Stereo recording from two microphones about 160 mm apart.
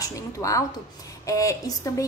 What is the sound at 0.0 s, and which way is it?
A woman's voice, 20° left (ahead or behind).